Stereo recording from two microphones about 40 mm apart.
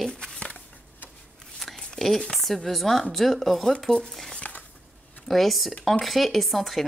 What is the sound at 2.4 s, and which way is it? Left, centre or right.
Speech, centre.